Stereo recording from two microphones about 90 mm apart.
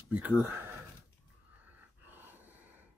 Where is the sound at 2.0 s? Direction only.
20° right (ahead or behind).